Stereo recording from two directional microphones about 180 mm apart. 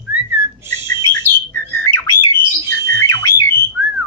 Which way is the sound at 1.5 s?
10° left (ahead or behind).